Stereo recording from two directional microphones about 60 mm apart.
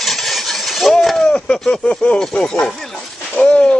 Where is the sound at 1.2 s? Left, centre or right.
Centre.